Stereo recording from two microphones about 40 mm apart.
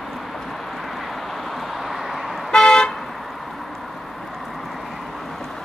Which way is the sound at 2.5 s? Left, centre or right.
Centre.